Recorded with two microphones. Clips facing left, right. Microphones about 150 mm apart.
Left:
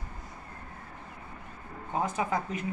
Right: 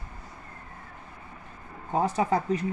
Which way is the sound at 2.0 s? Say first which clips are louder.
Right 5 dB; 35° right (ahead or behind).